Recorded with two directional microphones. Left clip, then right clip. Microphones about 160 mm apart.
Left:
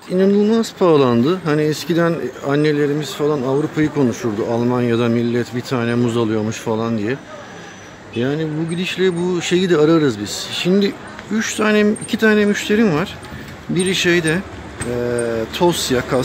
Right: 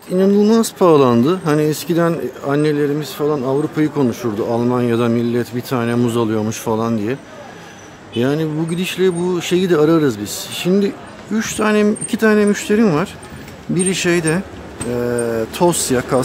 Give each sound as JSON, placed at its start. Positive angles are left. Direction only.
{"t": 0.1, "sound": "speech", "side_deg": -10}
{"t": 0.4, "sound": "speech", "side_deg": -20}
{"t": 8.2, "sound": "speech", "side_deg": -25}